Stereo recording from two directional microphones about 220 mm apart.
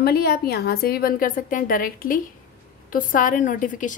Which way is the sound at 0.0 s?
45° left (ahead or behind).